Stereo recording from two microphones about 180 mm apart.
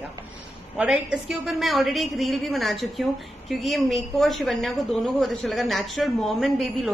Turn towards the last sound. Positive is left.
turn(degrees=0)  # may be behind; listen again after turning